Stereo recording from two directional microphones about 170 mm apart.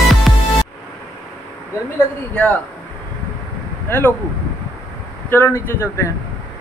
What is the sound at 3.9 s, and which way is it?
Speech, 15° left (ahead or behind).